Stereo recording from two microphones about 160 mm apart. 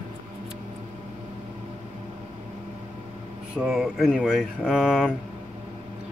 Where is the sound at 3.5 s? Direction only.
5° right (ahead or behind).